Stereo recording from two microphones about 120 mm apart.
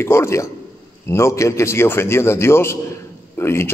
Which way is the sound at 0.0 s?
20° left (ahead or behind).